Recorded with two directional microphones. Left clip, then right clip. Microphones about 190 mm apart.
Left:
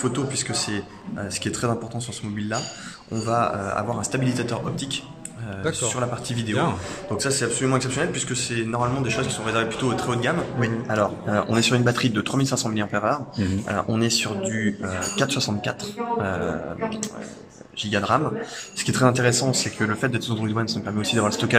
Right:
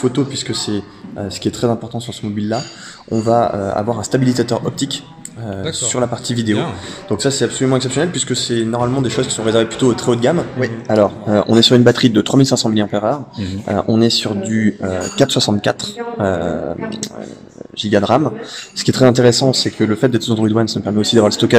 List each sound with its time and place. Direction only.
0.0 s speech: 20° right (ahead or behind)
17.7 s speech: 35° right (ahead or behind)